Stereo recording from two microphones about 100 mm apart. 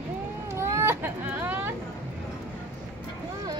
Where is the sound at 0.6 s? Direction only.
25° right (ahead or behind).